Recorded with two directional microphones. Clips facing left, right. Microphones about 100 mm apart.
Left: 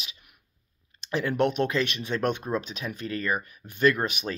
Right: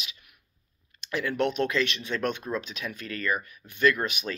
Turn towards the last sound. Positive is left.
turn(degrees=40)  # may be behind; listen again after turning